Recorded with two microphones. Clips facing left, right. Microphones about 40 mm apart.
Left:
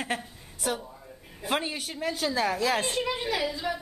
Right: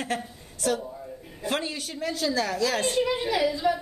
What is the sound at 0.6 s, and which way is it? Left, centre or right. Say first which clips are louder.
A woman's voice: right 4 dB; centre.